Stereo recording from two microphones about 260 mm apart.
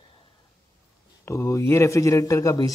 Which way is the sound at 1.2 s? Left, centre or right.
Centre.